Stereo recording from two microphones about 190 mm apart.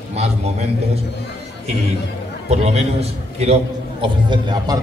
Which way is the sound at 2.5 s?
35° right (ahead or behind).